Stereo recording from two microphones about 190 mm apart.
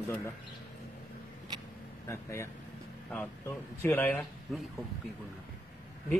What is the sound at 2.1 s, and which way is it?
Speech, 15° left (ahead or behind).